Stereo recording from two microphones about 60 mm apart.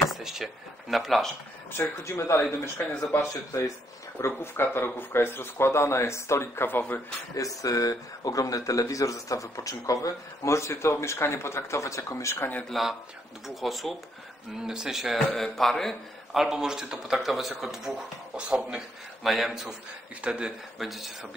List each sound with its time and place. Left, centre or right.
0.1 s speech: centre
1.8 s speech: left
4.2 s speech: left
7.3 s speech: left
12.6 s speech: centre
15.3 s speech: centre
16.3 s speech: centre
19.2 s speech: centre
20.8 s speech: centre